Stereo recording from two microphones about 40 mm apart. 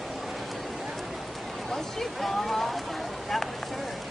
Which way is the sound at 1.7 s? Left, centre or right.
Centre.